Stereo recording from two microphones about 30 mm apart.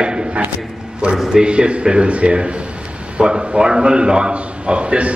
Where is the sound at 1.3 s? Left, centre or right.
Right.